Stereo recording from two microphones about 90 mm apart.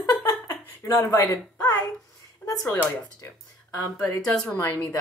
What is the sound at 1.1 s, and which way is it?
Speech, 40° left (ahead or behind).